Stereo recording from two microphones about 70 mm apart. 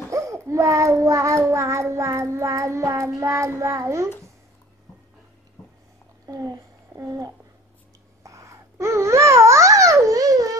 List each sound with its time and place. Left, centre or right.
0.1 s a child's voice: right
1.4 s child singing: right
6.2 s speech: right
8.2 s babbling: right